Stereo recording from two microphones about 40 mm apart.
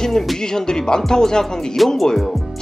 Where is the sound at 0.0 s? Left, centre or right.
Centre.